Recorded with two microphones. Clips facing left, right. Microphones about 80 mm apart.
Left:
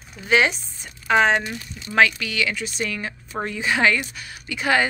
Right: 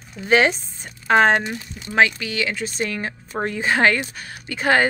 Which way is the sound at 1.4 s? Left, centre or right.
Right.